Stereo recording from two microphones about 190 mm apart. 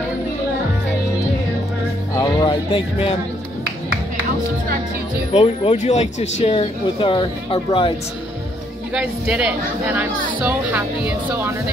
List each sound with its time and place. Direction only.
2.1 s music: 30° left (ahead or behind)
5.3 s speech: 30° left (ahead or behind)
8.9 s speech: 5° right (ahead or behind)